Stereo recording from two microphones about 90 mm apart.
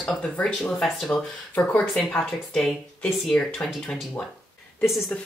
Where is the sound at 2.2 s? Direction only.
5° left (ahead or behind).